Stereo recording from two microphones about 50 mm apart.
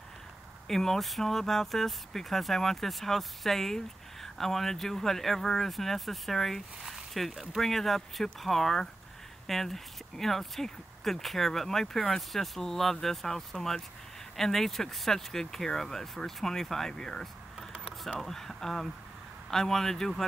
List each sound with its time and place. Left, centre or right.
0.7 s speech: centre